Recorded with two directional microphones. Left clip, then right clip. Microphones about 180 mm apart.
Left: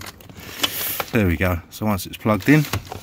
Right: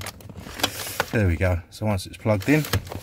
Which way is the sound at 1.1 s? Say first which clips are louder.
Left 5 dB; 30° left (ahead or behind).